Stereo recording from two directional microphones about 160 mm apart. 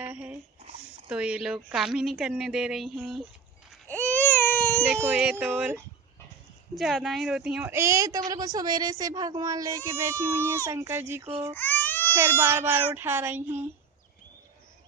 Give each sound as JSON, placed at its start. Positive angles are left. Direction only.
{"t": 0.0, "sound": "a sound", "side_deg": -10}
{"t": 1.0, "sound": "a woman's voice", "side_deg": -5}
{"t": 3.8, "sound": "baby cry", "side_deg": 10}
{"t": 5.0, "sound": "a child's voice", "side_deg": -10}
{"t": 11.5, "sound": "baby cry", "side_deg": 10}
{"t": 12.1, "sound": "a child's voice", "side_deg": -15}